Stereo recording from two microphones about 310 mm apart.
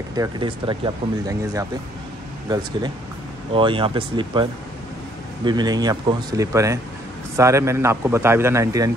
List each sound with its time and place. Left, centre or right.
0.1 s speech: centre
3.5 s speech: centre